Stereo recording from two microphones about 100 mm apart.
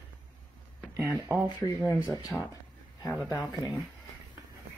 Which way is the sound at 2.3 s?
15° left (ahead or behind).